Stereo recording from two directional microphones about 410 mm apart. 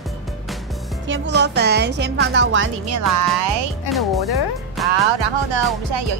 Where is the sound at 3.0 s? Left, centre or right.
Right.